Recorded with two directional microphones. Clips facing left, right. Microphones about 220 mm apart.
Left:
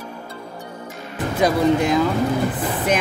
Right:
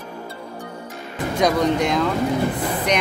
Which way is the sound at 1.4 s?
5° left (ahead or behind).